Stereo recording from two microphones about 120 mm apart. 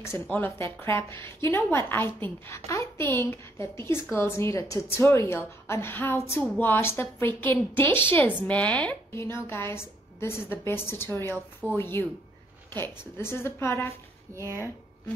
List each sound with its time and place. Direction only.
0.0 s a woman's voice: 20° left (ahead or behind)
14.3 s speech: 25° right (ahead or behind)